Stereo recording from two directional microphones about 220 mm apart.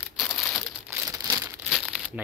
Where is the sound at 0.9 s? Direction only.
10° right (ahead or behind).